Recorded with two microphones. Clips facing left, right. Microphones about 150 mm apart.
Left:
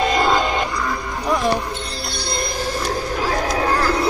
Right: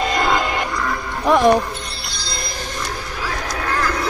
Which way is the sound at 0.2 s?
Centre (ahead or behind).